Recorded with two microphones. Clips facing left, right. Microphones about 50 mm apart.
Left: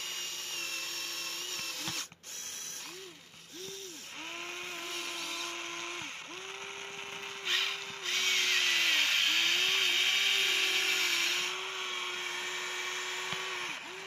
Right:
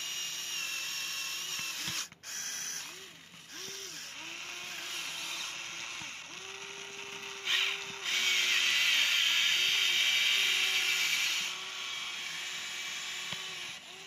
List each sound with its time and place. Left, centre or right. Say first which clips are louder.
4.9 s a sound: left 1 dB; centre
7.4 s tools: right 1 dB; centre
11.5 s blender: left 3 dB; left